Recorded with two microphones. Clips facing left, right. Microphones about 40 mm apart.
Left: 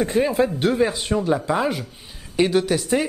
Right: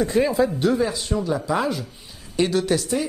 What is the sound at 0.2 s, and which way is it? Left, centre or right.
Speech, centre.